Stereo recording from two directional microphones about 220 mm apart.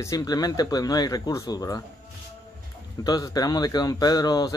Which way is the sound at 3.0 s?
15° left (ahead or behind).